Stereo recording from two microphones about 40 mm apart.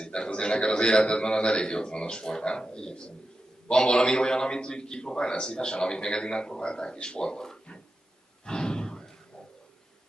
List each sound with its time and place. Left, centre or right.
0.0 s a man's voice: left
8.5 s sigh: centre